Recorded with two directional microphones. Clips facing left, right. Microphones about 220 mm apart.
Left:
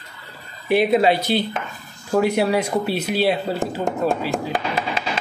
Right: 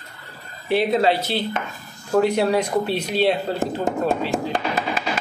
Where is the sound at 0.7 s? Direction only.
15° left (ahead or behind).